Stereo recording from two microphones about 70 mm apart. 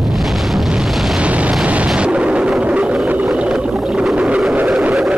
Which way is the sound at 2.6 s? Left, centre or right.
Centre.